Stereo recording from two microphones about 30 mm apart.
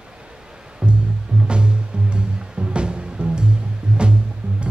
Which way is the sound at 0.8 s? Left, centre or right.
Right.